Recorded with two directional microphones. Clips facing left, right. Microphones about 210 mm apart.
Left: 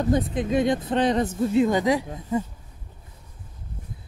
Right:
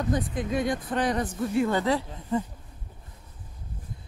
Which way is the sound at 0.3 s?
20° left (ahead or behind).